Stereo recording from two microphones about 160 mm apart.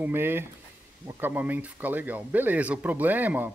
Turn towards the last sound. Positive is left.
turn(degrees=-10)  # may be behind; listen again after turning